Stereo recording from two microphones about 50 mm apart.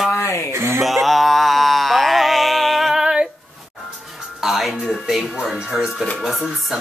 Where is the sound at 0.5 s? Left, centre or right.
Right.